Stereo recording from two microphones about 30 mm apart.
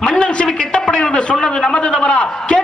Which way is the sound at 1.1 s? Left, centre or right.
Left.